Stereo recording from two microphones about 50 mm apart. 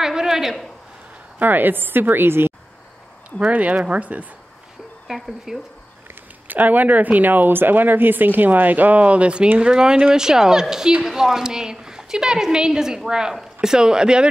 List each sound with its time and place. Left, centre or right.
0.0 s a sound: centre
1.4 s a woman's voice: right
3.3 s speech: right
5.0 s a woman's voice: centre
6.4 s a woman's voice: right; by 14.3 s centre